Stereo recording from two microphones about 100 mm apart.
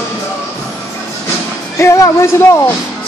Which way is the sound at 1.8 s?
30° left (ahead or behind).